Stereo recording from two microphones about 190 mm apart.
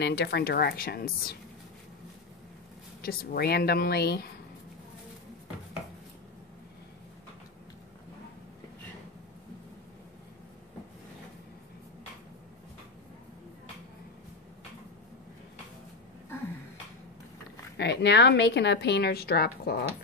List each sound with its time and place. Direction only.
0.0 s a woman's voice: 60° left (ahead or behind)
3.0 s a woman's voice: 50° left (ahead or behind)
17.7 s a woman's voice: 60° left (ahead or behind)